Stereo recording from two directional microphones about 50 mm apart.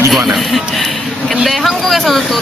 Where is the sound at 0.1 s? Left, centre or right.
Centre.